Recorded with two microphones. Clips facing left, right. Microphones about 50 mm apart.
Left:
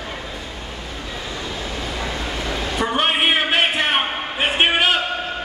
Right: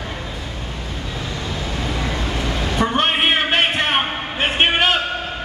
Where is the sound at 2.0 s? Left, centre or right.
Centre.